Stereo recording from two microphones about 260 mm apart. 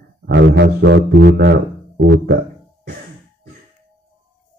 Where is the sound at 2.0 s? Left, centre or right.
Right.